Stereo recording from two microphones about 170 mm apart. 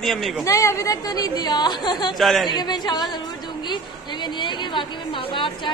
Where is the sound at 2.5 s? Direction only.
25° left (ahead or behind).